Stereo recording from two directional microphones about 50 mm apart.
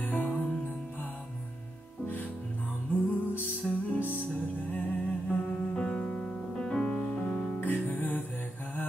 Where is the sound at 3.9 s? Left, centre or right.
Left.